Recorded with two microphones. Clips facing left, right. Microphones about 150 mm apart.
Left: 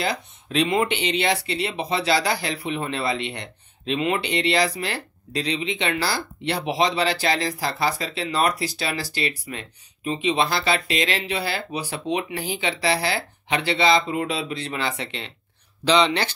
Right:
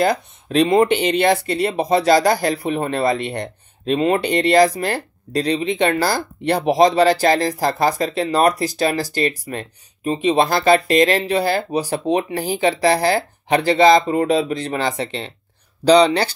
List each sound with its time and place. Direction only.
0.0 s speech: 45° right (ahead or behind)